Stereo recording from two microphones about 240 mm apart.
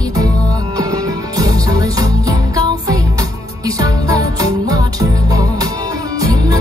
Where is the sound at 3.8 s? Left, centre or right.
Centre.